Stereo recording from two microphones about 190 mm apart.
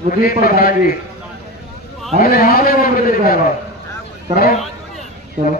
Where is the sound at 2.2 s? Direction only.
50° left (ahead or behind).